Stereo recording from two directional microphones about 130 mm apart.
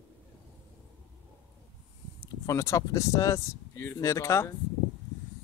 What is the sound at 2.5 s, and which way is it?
Speech, 25° left (ahead or behind).